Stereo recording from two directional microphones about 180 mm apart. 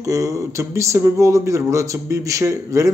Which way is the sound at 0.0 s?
20° right (ahead or behind).